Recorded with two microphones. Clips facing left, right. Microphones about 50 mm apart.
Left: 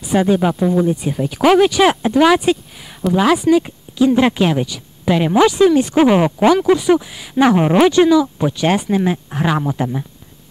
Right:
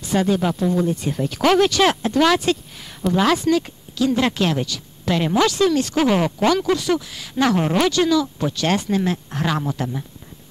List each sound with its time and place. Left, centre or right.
0.0 s speech: centre